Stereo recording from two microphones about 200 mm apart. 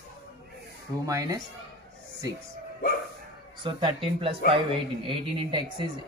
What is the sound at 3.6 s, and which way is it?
A man's voice, 25° right (ahead or behind).